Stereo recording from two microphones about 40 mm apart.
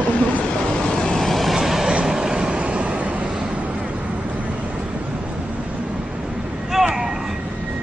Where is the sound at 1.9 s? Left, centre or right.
Right.